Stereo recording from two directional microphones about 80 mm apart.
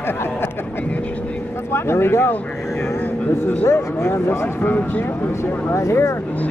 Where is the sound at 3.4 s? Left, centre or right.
Left.